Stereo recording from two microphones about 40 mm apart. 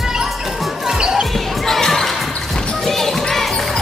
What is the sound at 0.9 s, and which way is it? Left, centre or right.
Basketball bounce, centre.